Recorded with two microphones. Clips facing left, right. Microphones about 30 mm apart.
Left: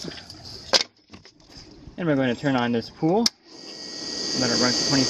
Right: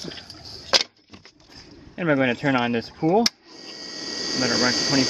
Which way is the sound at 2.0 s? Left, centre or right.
Centre.